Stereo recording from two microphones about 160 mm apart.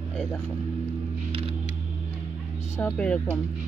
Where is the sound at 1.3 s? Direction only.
35° right (ahead or behind).